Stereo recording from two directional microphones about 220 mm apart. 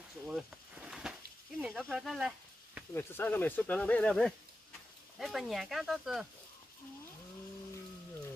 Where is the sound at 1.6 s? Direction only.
Centre (ahead or behind).